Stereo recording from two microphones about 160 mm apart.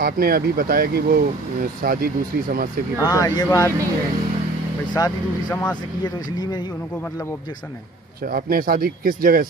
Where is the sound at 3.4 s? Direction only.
20° left (ahead or behind).